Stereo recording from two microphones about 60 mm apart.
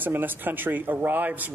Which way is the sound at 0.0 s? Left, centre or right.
Right.